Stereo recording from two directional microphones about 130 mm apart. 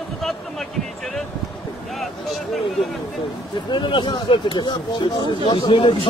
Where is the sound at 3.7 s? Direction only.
40° left (ahead or behind).